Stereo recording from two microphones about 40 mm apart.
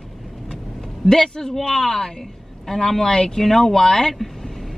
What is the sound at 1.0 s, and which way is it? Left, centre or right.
Speech, centre.